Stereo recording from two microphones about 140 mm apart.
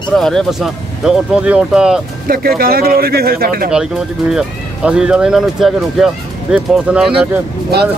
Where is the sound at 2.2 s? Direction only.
90° right.